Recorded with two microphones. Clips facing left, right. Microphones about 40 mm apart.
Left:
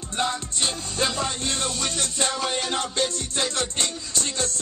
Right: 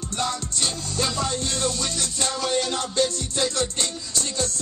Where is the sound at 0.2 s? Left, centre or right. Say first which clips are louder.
Left 1 dB; left.